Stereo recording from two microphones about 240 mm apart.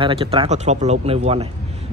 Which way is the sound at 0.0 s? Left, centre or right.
Right.